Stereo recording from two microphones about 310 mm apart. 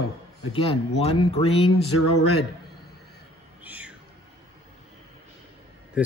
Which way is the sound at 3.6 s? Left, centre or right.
Centre.